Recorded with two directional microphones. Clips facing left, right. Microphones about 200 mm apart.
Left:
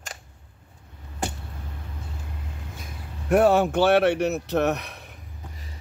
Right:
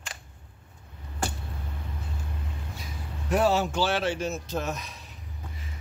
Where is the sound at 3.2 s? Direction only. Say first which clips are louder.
Left 6 dB; 55° left (ahead or behind).